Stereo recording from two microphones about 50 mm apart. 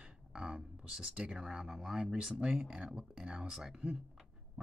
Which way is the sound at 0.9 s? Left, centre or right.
Centre.